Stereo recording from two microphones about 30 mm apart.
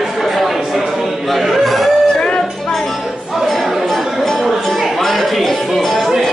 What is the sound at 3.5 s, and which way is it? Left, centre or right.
Music, centre.